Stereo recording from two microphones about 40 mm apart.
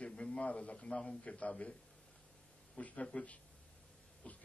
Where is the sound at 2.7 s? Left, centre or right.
Left.